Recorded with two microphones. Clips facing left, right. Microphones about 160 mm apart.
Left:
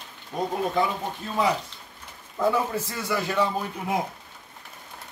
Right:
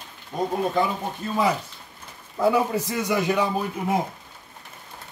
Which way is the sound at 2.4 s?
15° right (ahead or behind).